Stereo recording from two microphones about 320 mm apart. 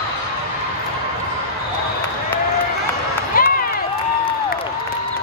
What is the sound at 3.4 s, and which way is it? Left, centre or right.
Run, left.